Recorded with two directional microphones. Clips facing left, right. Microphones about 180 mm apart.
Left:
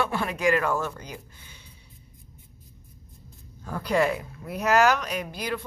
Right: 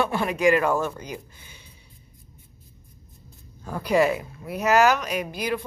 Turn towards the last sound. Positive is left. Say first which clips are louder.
# right 4 dB
turn(degrees=-10)  # may be behind; listen again after turning